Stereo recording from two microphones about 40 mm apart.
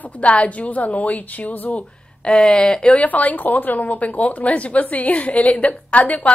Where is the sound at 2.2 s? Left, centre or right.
Left.